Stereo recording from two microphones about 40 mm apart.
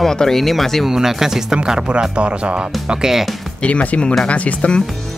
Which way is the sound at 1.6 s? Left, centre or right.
Right.